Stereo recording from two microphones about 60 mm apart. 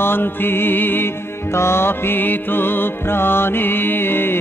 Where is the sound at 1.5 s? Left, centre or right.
Left.